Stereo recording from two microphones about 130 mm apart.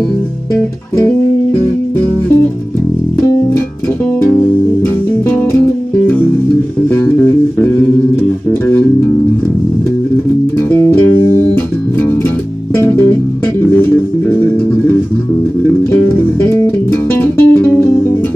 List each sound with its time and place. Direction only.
8.5 s music: 15° left (ahead or behind)
10.7 s music: 15° left (ahead or behind)
12.7 s music: 15° left (ahead or behind)
16.3 s music: 15° left (ahead or behind)